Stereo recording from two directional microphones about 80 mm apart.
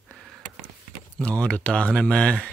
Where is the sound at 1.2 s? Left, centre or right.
Centre.